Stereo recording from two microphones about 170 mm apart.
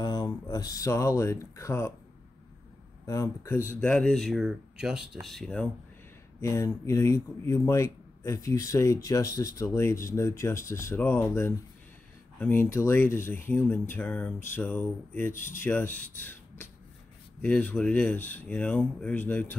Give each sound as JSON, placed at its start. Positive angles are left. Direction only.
{"t": 0.0, "sound": "speech", "side_deg": 25}
{"t": 3.1, "sound": "speech", "side_deg": 15}
{"t": 6.4, "sound": "speech", "side_deg": 15}